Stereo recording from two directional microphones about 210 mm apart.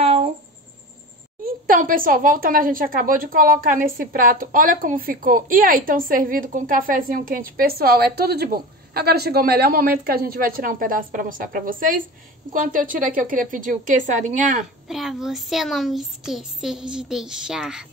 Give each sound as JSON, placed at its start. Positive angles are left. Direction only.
{"t": 1.4, "sound": "speech", "side_deg": -45}
{"t": 14.9, "sound": "speech", "side_deg": 0}